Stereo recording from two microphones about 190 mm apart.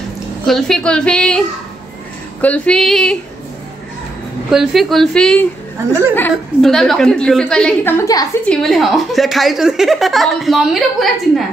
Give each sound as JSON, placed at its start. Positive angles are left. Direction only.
{"t": 0.5, "sound": "speech", "side_deg": 0}
{"t": 2.4, "sound": "speech", "side_deg": 5}
{"t": 4.5, "sound": "speech", "side_deg": 0}
{"t": 8.0, "sound": "a woman's voice", "side_deg": 20}
{"t": 8.5, "sound": "speech", "side_deg": 0}